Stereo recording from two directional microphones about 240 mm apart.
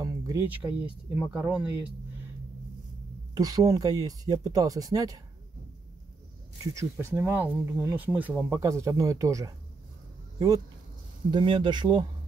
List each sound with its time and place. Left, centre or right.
0.0 s speech: centre
3.3 s speech: centre
6.6 s speech: centre
11.2 s speech: centre